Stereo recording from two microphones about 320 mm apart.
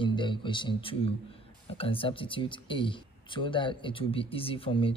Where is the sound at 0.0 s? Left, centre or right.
Centre.